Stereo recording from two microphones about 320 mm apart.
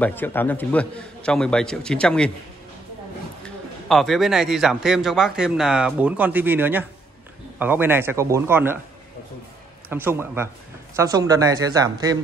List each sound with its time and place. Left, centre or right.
0.0 s a man's voice: centre
3.4 s a man's voice: centre
9.8 s speech: centre